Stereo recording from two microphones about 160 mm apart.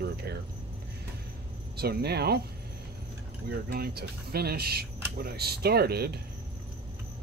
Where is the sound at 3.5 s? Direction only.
90° right.